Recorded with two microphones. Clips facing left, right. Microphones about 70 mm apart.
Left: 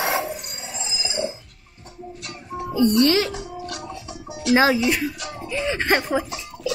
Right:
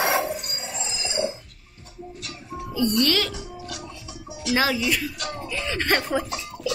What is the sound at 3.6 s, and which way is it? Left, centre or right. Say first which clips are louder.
Music: left 4 dB; left.